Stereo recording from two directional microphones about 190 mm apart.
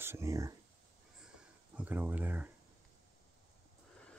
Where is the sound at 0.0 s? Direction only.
15° right (ahead or behind).